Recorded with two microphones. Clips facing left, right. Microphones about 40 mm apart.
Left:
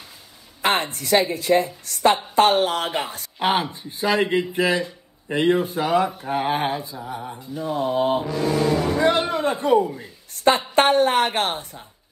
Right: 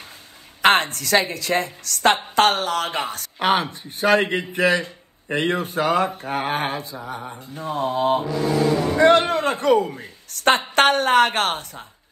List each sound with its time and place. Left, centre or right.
0.6 s a woman's voice: right
3.3 s a man's voice: right
6.8 s a man's voice: right